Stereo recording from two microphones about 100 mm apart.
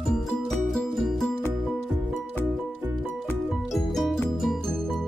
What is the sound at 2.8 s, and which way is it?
Music, 20° right (ahead or behind).